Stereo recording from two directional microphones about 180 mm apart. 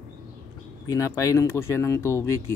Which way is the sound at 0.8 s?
20° left (ahead or behind).